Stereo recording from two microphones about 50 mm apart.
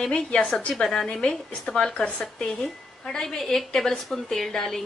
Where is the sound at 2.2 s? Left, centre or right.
Centre.